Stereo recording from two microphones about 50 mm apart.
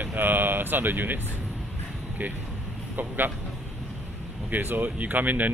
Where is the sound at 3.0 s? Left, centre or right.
Right.